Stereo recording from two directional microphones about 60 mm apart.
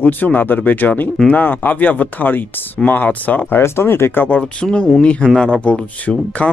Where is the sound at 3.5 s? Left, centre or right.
Left.